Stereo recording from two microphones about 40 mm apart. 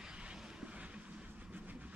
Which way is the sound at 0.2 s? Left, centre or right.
Right.